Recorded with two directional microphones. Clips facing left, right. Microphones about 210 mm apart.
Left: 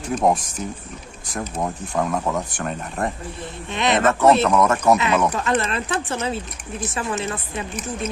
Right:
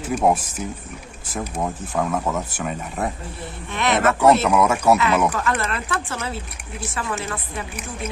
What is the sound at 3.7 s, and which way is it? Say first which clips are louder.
Speech: left 1 dB; 20° left (ahead or behind).